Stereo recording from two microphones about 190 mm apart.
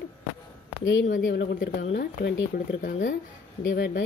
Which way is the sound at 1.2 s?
70° left (ahead or behind).